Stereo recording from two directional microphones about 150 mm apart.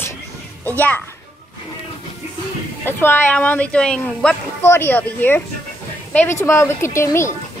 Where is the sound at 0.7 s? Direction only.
10° left (ahead or behind).